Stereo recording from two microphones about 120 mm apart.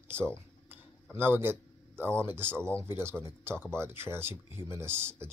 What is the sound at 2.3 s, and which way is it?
Speech, 20° right (ahead or behind).